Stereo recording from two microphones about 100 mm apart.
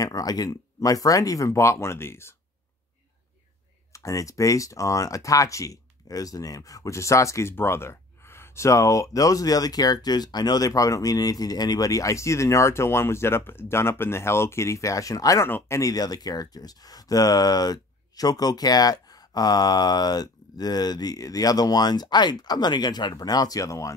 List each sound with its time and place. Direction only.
0.0 s speech: 40° left (ahead or behind)
3.9 s speech: 35° left (ahead or behind)
15.4 s speech: 25° left (ahead or behind)
15.8 s speech: 40° left (ahead or behind)